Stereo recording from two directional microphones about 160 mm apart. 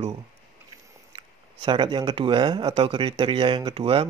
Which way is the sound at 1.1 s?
30° right (ahead or behind).